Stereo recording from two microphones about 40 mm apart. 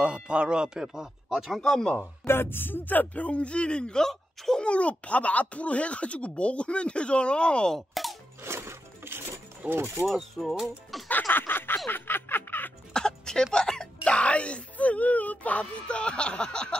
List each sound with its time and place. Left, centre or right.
0.0 s speech: right
0.9 s speech: centre
1.6 s speech: centre
2.0 s speech: left
3.3 s speech: left
4.0 s speech: centre
4.6 s speech: left
7.7 s speech: centre
8.4 s music: right
9.7 s speech: right
10.5 s speech: centre
11.1 s snicker: left
11.9 s a sound: left
12.9 s speech: centre